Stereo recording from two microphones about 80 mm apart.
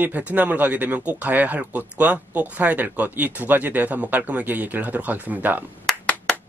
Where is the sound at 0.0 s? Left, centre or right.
Right.